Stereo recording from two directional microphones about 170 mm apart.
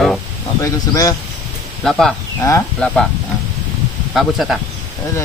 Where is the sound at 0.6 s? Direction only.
20° left (ahead or behind).